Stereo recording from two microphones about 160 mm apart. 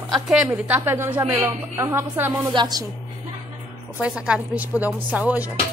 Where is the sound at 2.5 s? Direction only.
25° right (ahead or behind).